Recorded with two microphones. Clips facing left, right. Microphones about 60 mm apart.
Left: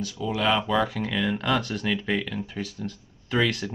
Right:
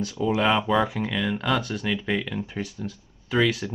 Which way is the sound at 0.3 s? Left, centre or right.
Centre.